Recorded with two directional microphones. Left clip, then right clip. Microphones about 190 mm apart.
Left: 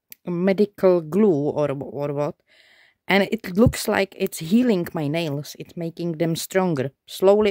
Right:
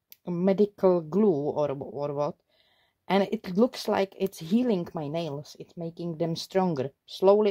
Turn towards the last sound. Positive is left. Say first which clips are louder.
# left 4 dB
turn(degrees=35)  # may be behind; listen again after turning